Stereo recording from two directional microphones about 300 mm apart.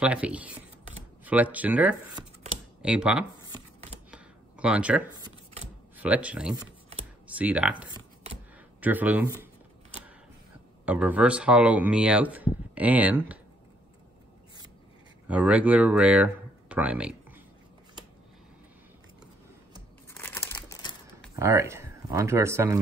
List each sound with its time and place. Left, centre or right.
0.0 s speech: centre
3.3 s a sound: centre
4.1 s a sound: centre
5.9 s speech: centre
8.8 s speech: centre
10.9 s speech: centre
15.2 s speech: centre
20.1 s crumpling: centre
21.4 s speech: centre